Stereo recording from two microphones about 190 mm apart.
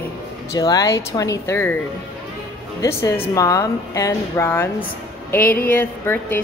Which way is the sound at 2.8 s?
15° left (ahead or behind).